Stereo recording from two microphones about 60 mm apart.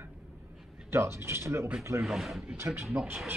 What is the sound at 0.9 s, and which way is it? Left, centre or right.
Speech, right.